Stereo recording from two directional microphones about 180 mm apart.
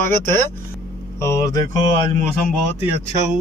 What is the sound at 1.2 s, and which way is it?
Speech, 15° left (ahead or behind).